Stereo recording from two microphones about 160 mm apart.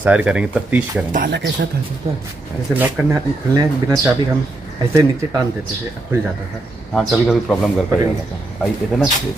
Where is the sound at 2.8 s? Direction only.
20° right (ahead or behind).